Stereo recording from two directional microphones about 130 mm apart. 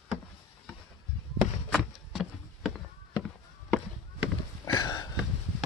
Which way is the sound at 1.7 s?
Centre (ahead or behind).